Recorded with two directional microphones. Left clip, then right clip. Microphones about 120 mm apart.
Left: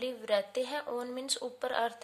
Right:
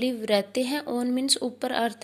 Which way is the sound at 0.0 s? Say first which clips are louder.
Right 7 dB; 25° right (ahead or behind).